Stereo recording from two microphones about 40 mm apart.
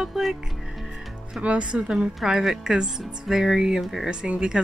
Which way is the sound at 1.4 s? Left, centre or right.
Right.